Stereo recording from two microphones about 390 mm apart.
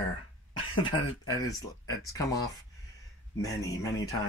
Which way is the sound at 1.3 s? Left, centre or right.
Centre.